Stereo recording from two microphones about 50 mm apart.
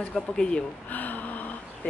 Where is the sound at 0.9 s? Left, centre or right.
Left.